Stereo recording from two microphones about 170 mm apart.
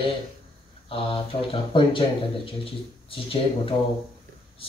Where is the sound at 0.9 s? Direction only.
30° left (ahead or behind).